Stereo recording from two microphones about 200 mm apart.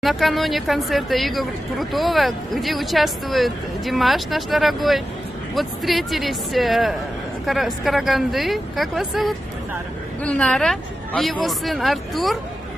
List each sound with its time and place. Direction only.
0.0 s speech: centre (ahead or behind)